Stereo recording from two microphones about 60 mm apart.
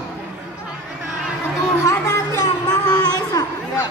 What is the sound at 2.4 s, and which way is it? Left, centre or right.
Music, left.